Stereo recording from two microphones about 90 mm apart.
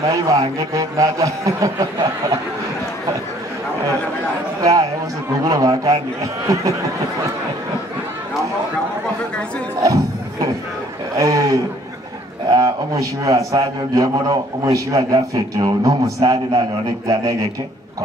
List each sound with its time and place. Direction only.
0.0 s a man's voice: 40° right (ahead or behind)
4.6 s a man's voice: 40° right (ahead or behind)
9.8 s a sound: 40° right (ahead or behind)
11.1 s a man's voice: 40° right (ahead or behind)